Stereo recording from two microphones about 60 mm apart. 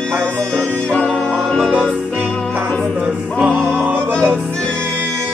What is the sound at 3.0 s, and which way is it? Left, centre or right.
Music, right.